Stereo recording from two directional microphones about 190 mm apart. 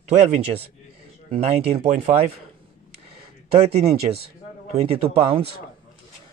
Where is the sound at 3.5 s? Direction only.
35° right (ahead or behind).